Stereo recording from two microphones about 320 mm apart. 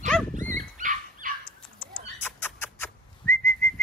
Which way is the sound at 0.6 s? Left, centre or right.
Right.